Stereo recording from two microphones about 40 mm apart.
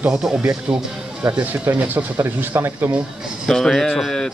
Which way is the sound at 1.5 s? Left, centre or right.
Right.